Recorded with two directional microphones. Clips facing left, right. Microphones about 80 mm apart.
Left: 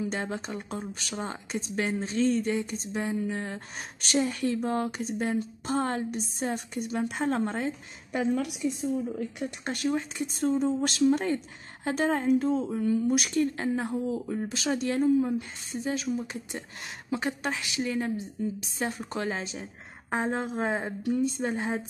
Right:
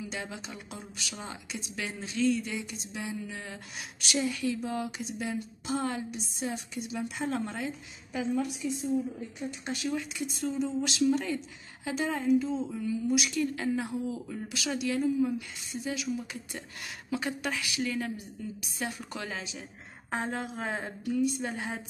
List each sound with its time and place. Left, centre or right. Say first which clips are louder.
0.0 s speech: left 7 dB; left
8.1 s a woman's voice: left 3 dB; left
9.4 s speech: left 1 dB; left
9.9 s speech: left 3 dB; left
20.1 s speech: left 4 dB; left